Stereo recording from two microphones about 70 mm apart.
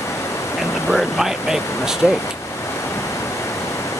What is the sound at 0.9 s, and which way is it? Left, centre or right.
Speech, centre.